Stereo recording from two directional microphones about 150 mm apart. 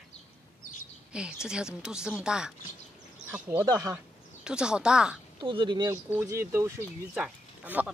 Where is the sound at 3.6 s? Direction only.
25° right (ahead or behind).